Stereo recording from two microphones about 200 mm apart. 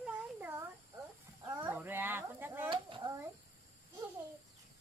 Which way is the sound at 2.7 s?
25° right (ahead or behind).